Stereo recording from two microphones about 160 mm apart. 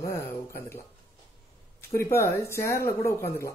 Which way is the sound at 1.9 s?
15° left (ahead or behind).